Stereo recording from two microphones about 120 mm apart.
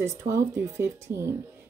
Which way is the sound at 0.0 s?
25° right (ahead or behind).